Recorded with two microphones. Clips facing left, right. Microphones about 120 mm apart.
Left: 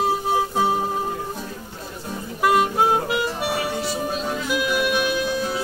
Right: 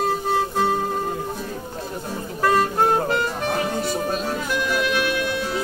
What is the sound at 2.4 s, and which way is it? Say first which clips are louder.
Music: left 1 dB; 10° left (ahead or behind).